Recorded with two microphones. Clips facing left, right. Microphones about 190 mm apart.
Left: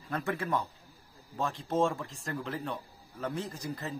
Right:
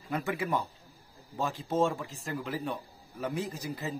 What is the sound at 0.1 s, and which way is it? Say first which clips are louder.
A man's voice: right 1 dB; 5° right (ahead or behind).